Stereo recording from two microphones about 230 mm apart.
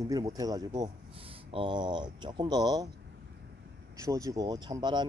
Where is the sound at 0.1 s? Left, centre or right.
Centre.